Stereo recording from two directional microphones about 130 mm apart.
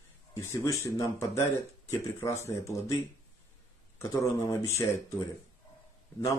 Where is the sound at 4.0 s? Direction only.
25° left (ahead or behind).